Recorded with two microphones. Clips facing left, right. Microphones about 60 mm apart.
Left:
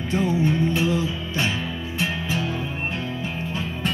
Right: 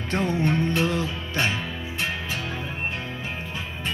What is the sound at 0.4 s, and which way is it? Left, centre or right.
Music, right.